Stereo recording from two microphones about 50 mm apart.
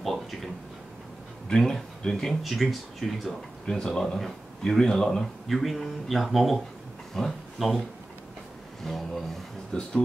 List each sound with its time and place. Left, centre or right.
0.0 s a sound: centre
1.5 s speech: centre
2.4 s speech: centre
3.6 s speech: centre
8.8 s speech: centre
9.7 s speech: centre